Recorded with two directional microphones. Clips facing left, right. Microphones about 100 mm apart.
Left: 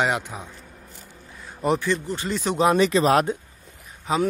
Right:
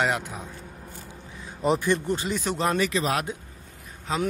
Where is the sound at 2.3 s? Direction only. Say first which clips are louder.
Left 9 dB; centre (ahead or behind).